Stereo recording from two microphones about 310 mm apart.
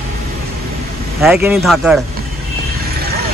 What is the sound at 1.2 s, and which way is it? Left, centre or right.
Speech, centre.